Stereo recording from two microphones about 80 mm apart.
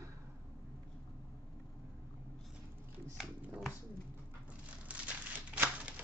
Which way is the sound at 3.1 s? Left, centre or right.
Centre.